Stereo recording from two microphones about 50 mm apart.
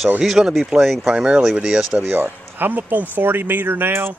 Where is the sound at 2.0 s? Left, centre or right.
Right.